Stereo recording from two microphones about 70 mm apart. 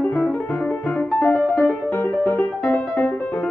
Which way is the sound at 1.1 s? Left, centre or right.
Left.